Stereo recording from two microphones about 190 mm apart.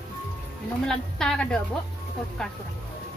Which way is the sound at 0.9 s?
5° left (ahead or behind).